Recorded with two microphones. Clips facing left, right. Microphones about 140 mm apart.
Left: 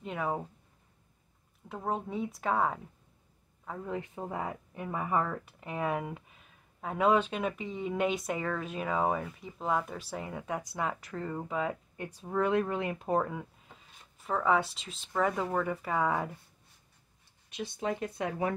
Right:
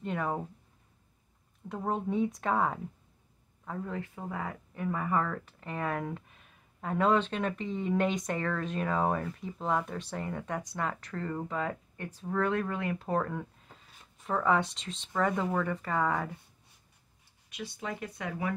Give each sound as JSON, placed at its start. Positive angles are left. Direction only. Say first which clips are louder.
{"t": 0.0, "sound": "speech", "louder": "right 1 dB", "side_deg": 5}
{"t": 1.7, "sound": "a man's voice", "louder": "right 2 dB", "side_deg": 0}
{"t": 3.9, "sound": "speech", "louder": "left 1 dB", "side_deg": 20}
{"t": 17.5, "sound": "speech", "louder": "left 4 dB", "side_deg": 30}